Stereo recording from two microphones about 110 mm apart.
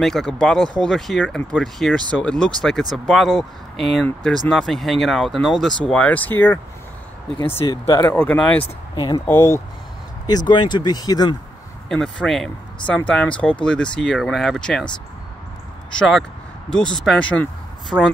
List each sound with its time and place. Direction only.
0.0 s speech: centre (ahead or behind)
5.9 s speech: 10° left (ahead or behind)
7.3 s speech: 50° left (ahead or behind)
7.8 s speech: 30° left (ahead or behind)
8.1 s speech: 15° left (ahead or behind)
8.9 s speech: 45° left (ahead or behind)
9.2 s speech: 20° left (ahead or behind)
10.2 s speech: 40° left (ahead or behind)
11.9 s speech: 5° left (ahead or behind)
15.9 s speech: 5° left (ahead or behind)
17.9 s speech: 5° right (ahead or behind)